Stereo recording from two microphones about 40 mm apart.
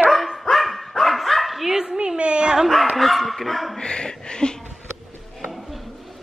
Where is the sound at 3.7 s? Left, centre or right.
Left.